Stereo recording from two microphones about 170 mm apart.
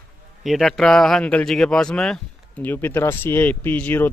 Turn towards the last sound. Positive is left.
turn(degrees=10)  # may be behind; listen again after turning